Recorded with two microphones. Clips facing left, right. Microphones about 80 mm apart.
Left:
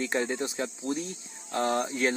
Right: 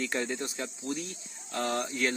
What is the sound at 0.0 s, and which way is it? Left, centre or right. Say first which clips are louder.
Speech: left 3 dB; left.